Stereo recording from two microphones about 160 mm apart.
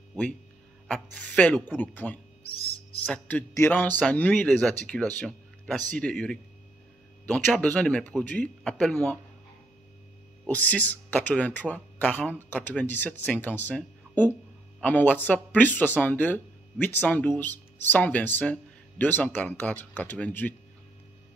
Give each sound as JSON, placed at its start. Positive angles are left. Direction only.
{"t": 0.8, "sound": "speech", "side_deg": 5}
{"t": 2.5, "sound": "owl", "side_deg": 35}
{"t": 3.1, "sound": "speech", "side_deg": 10}
{"t": 10.4, "sound": "speech", "side_deg": 10}